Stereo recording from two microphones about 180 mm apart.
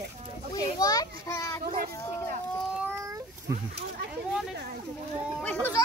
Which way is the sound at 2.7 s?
10° right (ahead or behind).